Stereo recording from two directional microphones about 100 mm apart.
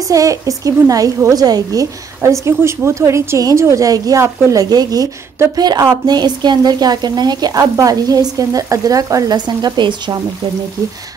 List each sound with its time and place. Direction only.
0.1 s a woman's voice: 35° right (ahead or behind); by 10.2 s 50° right (ahead or behind)